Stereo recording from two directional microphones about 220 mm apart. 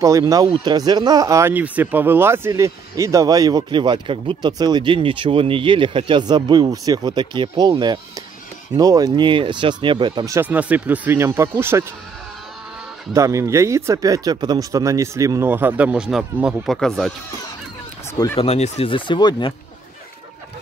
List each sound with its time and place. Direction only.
0.0 s speech: 15° right (ahead or behind)
13.1 s speech: 15° right (ahead or behind)
18.1 s speech: 15° left (ahead or behind)
18.4 s speech: 25° left (ahead or behind)